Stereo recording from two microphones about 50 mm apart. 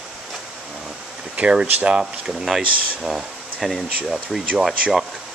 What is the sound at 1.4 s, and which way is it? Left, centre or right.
Speech, right.